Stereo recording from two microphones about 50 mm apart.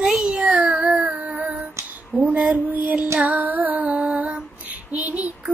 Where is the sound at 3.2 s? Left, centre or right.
Right.